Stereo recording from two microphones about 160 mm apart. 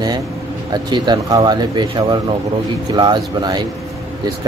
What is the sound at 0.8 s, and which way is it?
Speech, 30° right (ahead or behind).